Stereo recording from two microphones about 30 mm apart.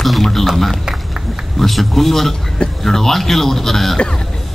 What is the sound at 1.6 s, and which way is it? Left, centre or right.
Speech, centre.